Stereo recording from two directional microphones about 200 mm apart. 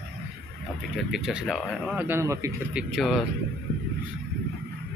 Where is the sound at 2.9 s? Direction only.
Centre (ahead or behind).